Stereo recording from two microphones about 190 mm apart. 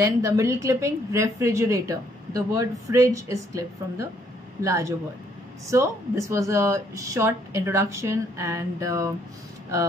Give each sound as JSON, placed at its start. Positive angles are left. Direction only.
{"t": 0.0, "sound": "a woman's voice", "side_deg": -15}